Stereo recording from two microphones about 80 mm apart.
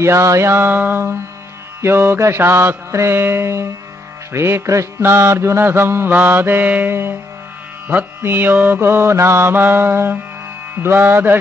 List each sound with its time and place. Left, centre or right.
0.0 s mantra: right